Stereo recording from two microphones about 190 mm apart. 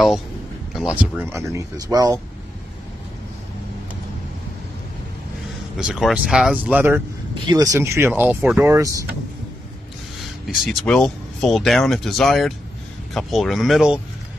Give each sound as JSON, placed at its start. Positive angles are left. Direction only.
{"t": 0.7, "sound": "speech", "side_deg": -5}
{"t": 5.8, "sound": "speech", "side_deg": -5}
{"t": 10.5, "sound": "speech", "side_deg": 0}